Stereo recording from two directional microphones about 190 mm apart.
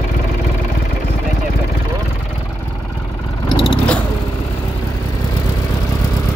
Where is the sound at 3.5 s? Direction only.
25° left (ahead or behind).